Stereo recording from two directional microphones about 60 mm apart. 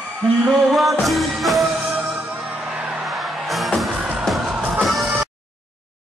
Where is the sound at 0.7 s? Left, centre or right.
Centre.